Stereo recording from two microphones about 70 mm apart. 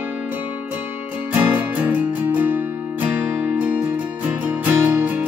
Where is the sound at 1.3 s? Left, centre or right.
Right.